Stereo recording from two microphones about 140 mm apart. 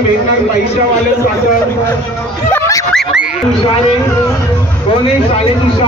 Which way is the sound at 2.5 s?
20° left (ahead or behind).